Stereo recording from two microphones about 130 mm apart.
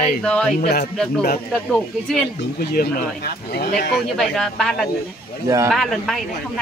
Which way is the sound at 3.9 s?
Centre (ahead or behind).